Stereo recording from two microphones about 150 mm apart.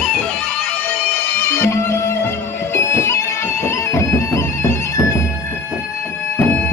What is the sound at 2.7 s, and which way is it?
Bagpipes, 15° left (ahead or behind).